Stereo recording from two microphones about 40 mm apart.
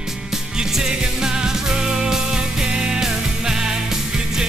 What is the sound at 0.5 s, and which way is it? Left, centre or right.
Music, centre.